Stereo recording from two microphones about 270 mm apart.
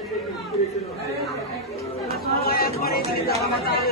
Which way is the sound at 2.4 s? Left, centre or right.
Left.